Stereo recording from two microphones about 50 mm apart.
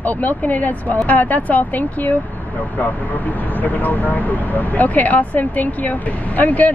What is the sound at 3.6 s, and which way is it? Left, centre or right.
Speech, left.